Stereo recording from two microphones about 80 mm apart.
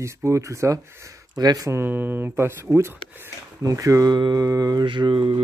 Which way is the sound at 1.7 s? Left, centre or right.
Right.